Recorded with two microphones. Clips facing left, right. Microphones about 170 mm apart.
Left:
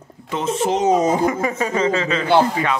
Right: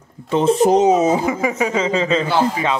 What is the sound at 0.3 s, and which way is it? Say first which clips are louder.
Speech: right 7 dB; 30° right (ahead or behind).